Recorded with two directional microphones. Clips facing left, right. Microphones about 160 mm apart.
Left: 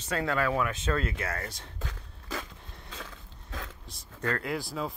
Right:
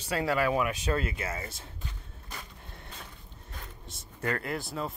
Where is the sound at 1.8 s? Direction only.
90° left.